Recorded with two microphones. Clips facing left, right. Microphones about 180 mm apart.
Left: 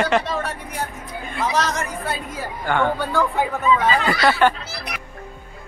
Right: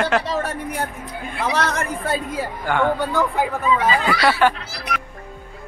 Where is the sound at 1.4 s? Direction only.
60° right (ahead or behind).